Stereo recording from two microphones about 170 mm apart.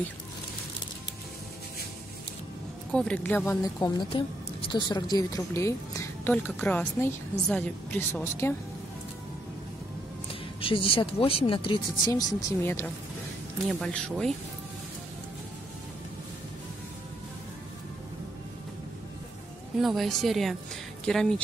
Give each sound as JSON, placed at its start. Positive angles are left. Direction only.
{"t": 2.9, "sound": "speech", "side_deg": 5}
{"t": 10.6, "sound": "speech", "side_deg": 30}
{"t": 13.7, "sound": "a woman's voice", "side_deg": 5}
{"t": 19.8, "sound": "a woman's voice", "side_deg": 0}